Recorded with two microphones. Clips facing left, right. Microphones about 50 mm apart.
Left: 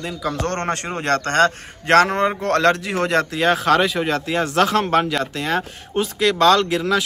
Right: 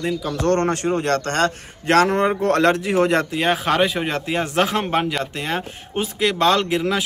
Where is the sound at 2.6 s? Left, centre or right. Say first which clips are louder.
Even; right.